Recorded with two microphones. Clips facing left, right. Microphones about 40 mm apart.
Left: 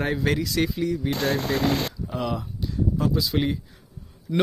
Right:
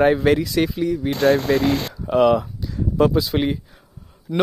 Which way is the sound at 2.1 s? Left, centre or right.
Right.